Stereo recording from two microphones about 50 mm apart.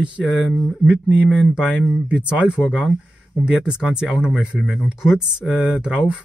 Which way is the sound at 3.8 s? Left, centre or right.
Centre.